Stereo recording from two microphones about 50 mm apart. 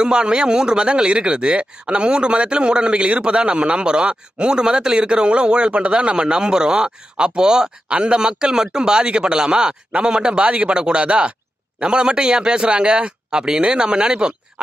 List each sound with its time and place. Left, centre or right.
0.0 s speech: centre